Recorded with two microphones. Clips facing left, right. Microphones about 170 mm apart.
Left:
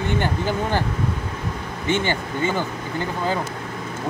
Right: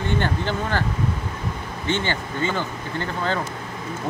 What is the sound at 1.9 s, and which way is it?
Speech, 10° left (ahead or behind).